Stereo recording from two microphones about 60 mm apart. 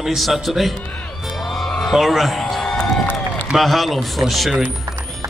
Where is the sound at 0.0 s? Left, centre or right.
Centre.